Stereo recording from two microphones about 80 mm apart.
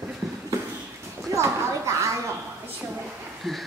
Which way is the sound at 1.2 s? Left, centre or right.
Right.